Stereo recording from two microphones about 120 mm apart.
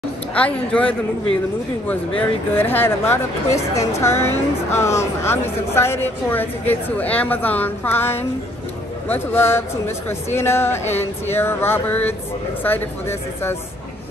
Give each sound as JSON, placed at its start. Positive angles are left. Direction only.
{"t": 0.3, "sound": "speech", "side_deg": 10}